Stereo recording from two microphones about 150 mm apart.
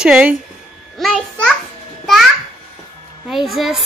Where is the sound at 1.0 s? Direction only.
Centre (ahead or behind).